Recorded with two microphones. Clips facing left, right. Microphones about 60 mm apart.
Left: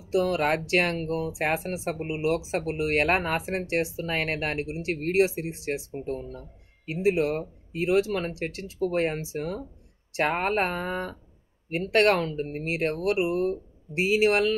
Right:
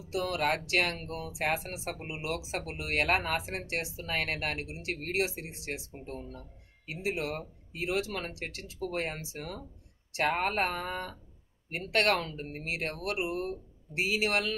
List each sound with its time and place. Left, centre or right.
0.1 s speech: left